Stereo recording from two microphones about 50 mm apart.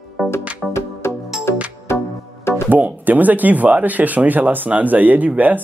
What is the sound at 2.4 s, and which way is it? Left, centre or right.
Music, left.